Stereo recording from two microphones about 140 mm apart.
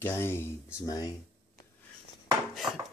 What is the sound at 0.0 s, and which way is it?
Speech, 15° left (ahead or behind).